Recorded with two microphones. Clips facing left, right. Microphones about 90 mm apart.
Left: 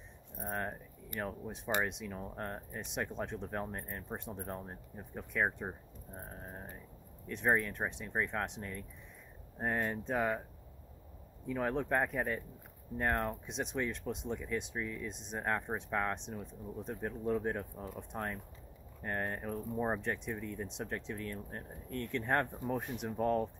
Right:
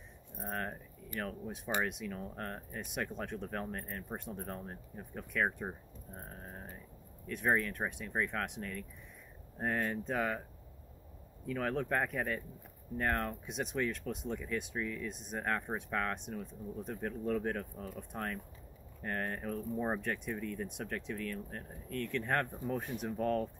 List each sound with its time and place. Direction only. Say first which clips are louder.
0.5 s keys jangling: left 1 dB; 20° left (ahead or behind)
1.2 s speech: left 1 dB; 25° left (ahead or behind)
11.4 s speech: left 1 dB; 20° left (ahead or behind)